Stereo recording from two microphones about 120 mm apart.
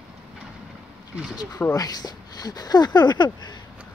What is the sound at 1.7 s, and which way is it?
Speech, 30° left (ahead or behind).